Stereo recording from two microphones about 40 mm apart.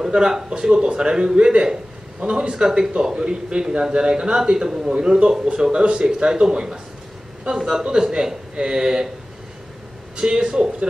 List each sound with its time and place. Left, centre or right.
0.0 s a man's voice: centre
10.1 s a man's voice: centre